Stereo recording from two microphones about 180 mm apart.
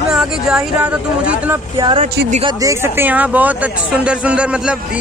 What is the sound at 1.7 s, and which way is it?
Speech, 25° right (ahead or behind).